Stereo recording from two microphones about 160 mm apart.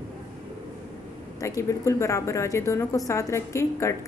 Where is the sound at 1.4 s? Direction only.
20° left (ahead or behind).